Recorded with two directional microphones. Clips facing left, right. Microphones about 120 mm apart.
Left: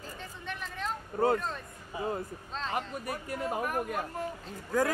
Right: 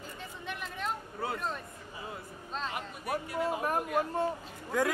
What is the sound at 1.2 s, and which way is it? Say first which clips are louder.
Speech: left 11 dB; 45° left (ahead or behind).